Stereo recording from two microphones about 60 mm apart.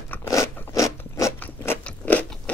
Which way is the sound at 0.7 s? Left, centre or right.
Left.